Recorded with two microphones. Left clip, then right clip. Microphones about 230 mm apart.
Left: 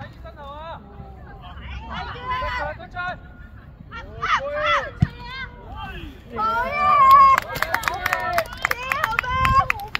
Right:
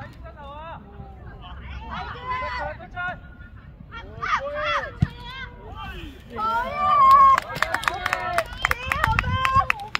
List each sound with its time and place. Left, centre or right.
0.4 s vehicle: left
1.7 s a sound: centre
2.9 s vehicle: left
3.9 s fowl: centre
5.2 s run: centre
6.3 s cat: centre
8.4 s run: centre